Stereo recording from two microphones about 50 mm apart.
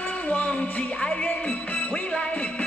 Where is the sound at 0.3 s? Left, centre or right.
Left.